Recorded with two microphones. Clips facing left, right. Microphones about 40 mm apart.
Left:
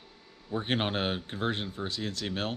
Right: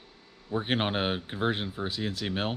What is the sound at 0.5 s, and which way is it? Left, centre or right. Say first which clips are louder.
Speech: right 2 dB; centre.